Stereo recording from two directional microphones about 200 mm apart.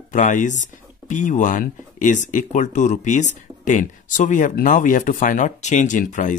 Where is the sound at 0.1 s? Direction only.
40° left (ahead or behind).